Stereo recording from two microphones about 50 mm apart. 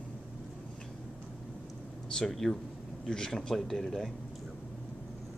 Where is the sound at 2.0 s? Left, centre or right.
Centre.